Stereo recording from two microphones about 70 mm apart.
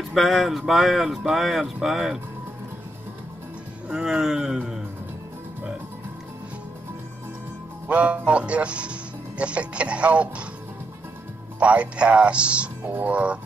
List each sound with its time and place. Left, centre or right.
0.1 s speech: centre
3.9 s speech: centre
7.9 s speech: centre
11.6 s speech: centre